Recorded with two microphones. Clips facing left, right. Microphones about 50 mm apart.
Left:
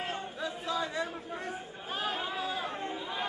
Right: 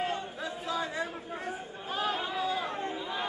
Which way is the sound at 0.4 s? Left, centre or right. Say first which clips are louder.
Even; right.